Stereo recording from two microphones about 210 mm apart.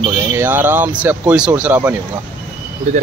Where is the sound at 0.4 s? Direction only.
10° right (ahead or behind).